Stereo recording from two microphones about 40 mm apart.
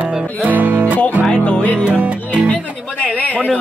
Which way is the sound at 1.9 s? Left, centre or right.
Right.